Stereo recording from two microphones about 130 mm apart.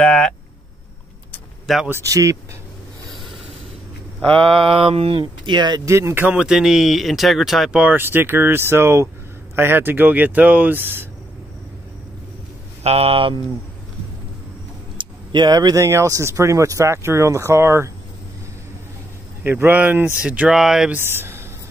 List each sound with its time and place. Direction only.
0.0 s a sound: 10° left (ahead or behind)
1.9 s speech: 20° right (ahead or behind)
4.2 s speech: 45° right (ahead or behind)
5.9 s speech: 20° right (ahead or behind)
12.8 s speech: 50° right (ahead or behind)
15.0 s speech: 35° right (ahead or behind)
19.4 s speech: 15° right (ahead or behind)
21.0 s speech: 20° right (ahead or behind)